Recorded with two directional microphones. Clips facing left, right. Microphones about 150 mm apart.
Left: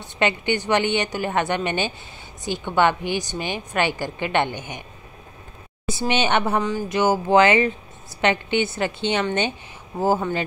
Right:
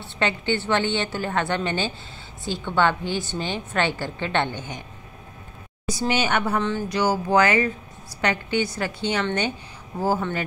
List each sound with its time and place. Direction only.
0.0 s a woman's voice: 15° left (ahead or behind)
5.9 s a woman's voice: 25° left (ahead or behind)